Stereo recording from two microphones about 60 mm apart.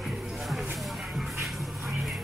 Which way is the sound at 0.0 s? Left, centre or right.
Centre.